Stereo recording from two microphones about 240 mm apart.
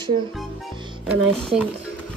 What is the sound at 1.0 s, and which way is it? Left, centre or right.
Speech, centre.